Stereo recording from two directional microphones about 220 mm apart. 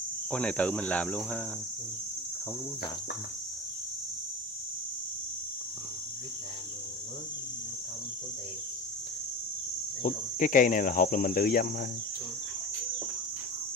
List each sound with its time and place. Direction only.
0.3 s speech: 5° left (ahead or behind)
10.0 s speech: 35° left (ahead or behind)